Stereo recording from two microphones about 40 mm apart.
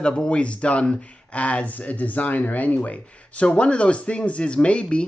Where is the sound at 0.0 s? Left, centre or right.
Left.